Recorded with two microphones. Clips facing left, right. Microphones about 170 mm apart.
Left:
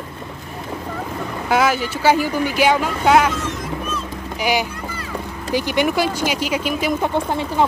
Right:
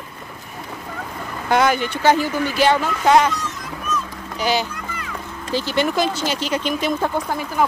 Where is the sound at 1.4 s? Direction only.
5° left (ahead or behind).